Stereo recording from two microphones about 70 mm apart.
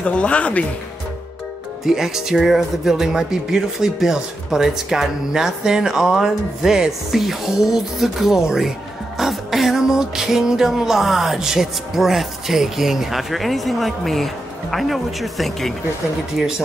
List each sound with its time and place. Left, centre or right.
0.0 s speech: centre
1.9 s speech: centre
9.2 s music: centre